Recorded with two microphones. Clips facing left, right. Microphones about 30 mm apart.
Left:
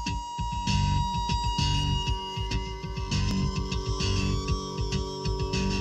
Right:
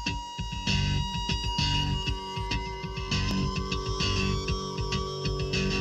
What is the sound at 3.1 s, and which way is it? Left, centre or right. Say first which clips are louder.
Music: even; centre.